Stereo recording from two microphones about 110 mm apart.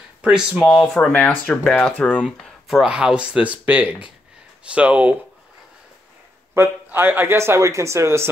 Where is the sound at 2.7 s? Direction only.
5° right (ahead or behind).